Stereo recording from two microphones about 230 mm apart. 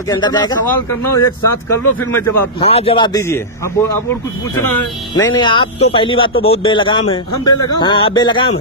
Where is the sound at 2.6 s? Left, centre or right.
Left.